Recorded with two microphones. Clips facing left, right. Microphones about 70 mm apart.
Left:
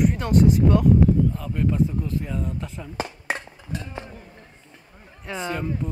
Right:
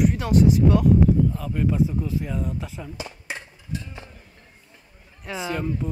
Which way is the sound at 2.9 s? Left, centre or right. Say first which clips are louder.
Left 6 dB; left.